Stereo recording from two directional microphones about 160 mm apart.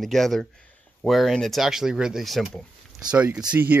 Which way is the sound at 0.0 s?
Centre (ahead or behind).